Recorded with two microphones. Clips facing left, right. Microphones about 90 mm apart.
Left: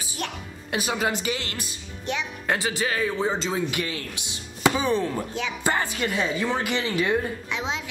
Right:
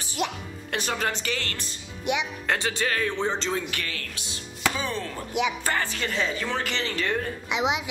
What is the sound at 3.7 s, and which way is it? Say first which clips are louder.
Speech: left 4 dB; 15° left (ahead or behind).